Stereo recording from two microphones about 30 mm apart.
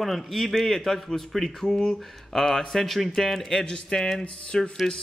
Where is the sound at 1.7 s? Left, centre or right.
Left.